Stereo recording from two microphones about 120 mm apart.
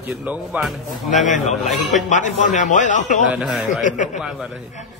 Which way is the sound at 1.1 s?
90° left.